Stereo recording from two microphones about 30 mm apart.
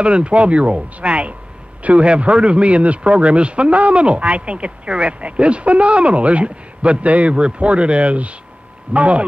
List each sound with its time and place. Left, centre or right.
0.0 s a man's voice: right
1.8 s a man's voice: right
2.0 s a man's voice: right
7.3 s a man's voice: right